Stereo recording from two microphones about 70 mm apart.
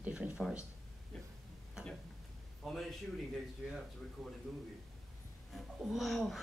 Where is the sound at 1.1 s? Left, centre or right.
Centre.